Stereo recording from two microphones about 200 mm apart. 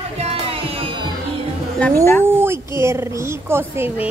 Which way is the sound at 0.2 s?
30° right (ahead or behind).